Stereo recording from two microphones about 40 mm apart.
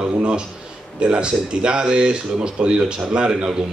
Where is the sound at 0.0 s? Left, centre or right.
Right.